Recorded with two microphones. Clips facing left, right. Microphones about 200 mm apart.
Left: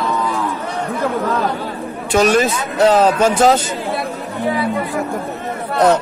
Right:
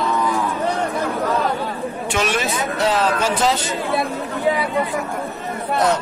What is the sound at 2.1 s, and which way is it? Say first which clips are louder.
Speech: left 9 dB; 40° left (ahead or behind).